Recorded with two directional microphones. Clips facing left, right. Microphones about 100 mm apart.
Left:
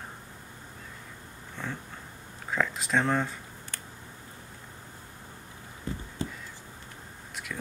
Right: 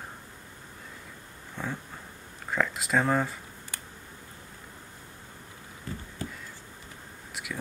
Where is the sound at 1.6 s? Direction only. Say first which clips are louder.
Right 2 dB; 10° right (ahead or behind).